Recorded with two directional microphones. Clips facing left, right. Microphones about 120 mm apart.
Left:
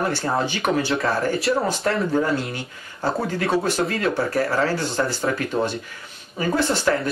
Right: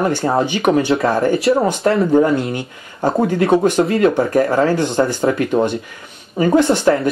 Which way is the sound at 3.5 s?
20° right (ahead or behind).